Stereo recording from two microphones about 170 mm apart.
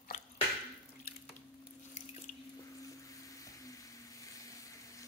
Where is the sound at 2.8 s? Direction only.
20° left (ahead or behind).